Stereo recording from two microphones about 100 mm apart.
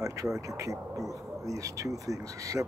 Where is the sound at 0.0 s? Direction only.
35° right (ahead or behind).